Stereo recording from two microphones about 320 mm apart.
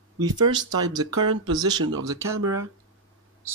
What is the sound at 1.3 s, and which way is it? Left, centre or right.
Speech, right.